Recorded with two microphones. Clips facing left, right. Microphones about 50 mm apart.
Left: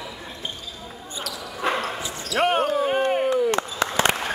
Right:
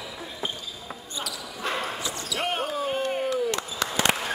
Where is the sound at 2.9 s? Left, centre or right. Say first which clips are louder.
Left 5 dB; left.